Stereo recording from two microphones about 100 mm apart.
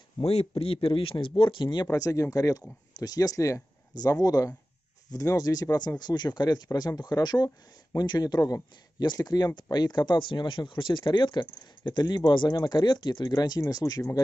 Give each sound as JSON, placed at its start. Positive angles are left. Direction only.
{"t": 0.2, "sound": "speech", "side_deg": 85}
{"t": 1.9, "sound": "speech", "side_deg": 35}